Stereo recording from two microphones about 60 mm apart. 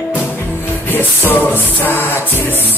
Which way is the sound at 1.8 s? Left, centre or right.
Left.